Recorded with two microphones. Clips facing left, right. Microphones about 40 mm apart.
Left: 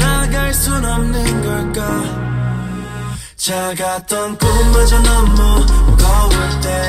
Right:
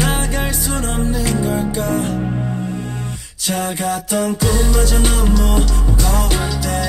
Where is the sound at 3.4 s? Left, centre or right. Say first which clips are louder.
Left 2 dB; left.